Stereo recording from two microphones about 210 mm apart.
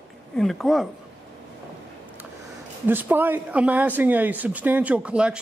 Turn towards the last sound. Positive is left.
turn(degrees=-5)  # may be behind; listen again after turning